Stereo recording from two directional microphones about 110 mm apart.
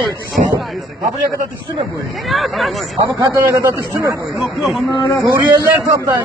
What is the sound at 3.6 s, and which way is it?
Speech, 25° right (ahead or behind).